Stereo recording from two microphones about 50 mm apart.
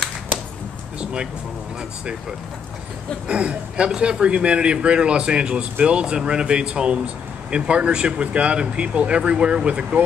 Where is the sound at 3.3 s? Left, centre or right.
Right.